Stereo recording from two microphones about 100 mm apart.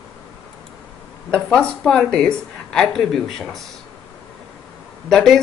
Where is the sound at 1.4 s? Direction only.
10° left (ahead or behind).